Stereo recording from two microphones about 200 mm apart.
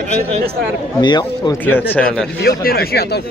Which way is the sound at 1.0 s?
20° left (ahead or behind).